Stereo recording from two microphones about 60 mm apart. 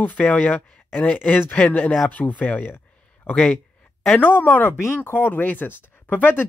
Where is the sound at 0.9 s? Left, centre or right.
Left.